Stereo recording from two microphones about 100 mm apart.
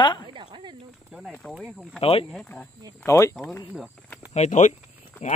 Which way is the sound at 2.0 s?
75° left (ahead or behind).